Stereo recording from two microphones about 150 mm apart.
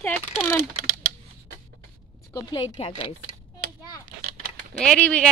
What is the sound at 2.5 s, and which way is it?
Speech, 40° left (ahead or behind).